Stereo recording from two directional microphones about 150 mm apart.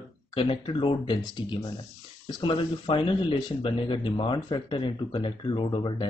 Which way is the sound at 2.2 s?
30° left (ahead or behind).